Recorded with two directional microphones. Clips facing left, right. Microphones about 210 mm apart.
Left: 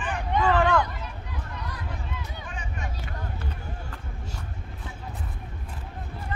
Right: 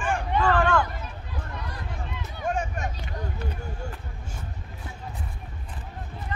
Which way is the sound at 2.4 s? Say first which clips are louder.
Right 9 dB; 45° right (ahead or behind).